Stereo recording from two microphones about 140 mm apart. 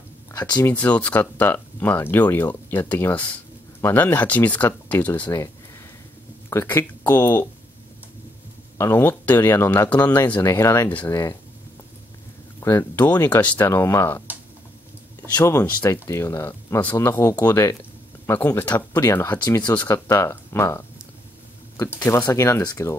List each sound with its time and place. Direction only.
0.3 s speech: 25° left (ahead or behind)
6.5 s speech: 20° left (ahead or behind)
8.7 s speech: 15° left (ahead or behind)
12.5 s speech: 20° left (ahead or behind)
15.3 s speech: 20° left (ahead or behind)